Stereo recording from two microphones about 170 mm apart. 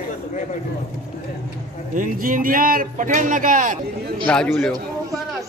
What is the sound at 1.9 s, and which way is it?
Speech, 50° right (ahead or behind).